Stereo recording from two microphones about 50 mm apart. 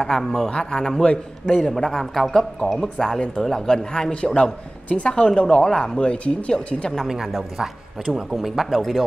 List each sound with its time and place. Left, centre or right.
0.0 s a man's voice: centre
0.5 s a man's voice: centre
7.5 s speech: centre